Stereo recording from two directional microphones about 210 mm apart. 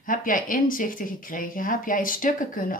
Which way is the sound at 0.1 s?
40° left (ahead or behind).